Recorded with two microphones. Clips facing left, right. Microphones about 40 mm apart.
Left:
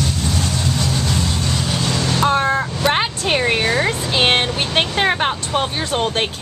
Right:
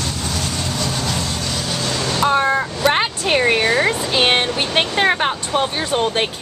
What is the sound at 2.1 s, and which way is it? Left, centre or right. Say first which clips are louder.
Speech: right 1 dB; centre.